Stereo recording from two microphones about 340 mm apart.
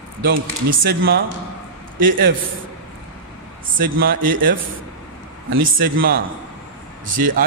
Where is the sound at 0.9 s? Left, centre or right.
Right.